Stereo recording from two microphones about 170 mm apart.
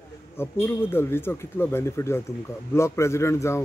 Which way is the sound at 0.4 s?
15° left (ahead or behind).